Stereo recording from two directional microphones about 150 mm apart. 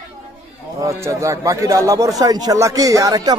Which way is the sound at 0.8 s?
20° right (ahead or behind).